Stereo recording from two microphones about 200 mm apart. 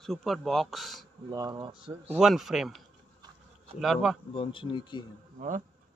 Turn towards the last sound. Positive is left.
turn(degrees=-40)  # may be behind; listen again after turning